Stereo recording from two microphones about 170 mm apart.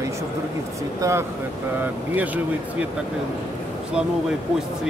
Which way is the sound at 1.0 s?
15° right (ahead or behind).